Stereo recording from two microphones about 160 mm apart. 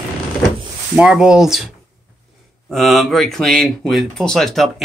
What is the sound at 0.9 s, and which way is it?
Speech, 5° right (ahead or behind).